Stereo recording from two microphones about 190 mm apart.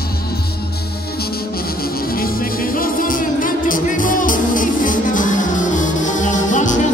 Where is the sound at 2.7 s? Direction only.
45° left (ahead or behind).